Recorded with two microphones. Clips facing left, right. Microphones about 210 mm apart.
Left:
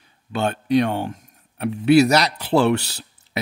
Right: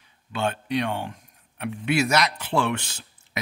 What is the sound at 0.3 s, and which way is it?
A man's voice, 40° left (ahead or behind).